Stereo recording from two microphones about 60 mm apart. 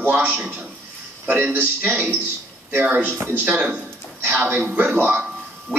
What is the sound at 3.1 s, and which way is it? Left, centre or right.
Speech, right.